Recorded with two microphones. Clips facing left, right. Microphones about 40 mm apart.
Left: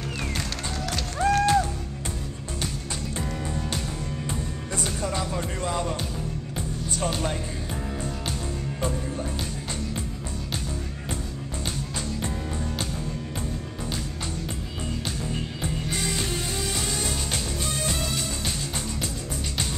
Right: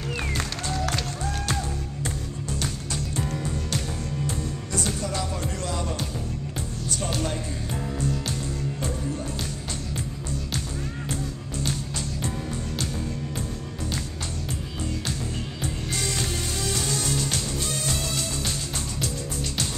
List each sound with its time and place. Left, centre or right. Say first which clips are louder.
1.1 s music: left 9 dB; left
1.5 s music: left 7 dB; centre
4.3 s music: right 1 dB; centre
8.8 s music: left 4 dB; centre
11.1 s music: right 1 dB; left
13.3 s music: even; centre
15.6 s music: even; centre